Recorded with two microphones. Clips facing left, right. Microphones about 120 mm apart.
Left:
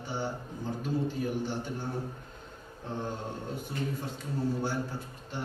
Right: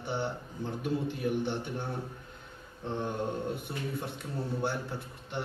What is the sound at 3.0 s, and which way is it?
A man's voice, 60° right (ahead or behind).